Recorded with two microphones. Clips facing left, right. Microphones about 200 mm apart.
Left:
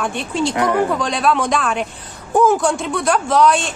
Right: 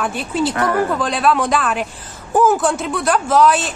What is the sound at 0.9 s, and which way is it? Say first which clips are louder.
A woman's voice: right 1 dB; centre (ahead or behind).